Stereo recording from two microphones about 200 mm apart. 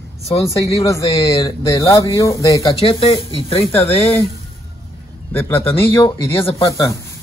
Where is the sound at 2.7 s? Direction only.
25° left (ahead or behind).